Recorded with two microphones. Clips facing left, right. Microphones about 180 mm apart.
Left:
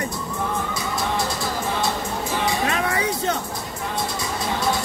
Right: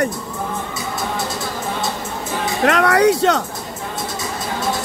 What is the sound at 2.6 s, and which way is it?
Speech, 75° right (ahead or behind).